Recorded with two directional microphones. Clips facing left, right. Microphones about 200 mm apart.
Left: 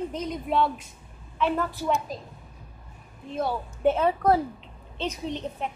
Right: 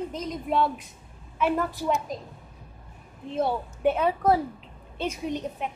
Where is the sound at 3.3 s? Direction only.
25° right (ahead or behind).